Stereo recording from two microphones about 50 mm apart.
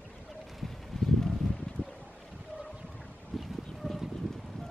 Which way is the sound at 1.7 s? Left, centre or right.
Left.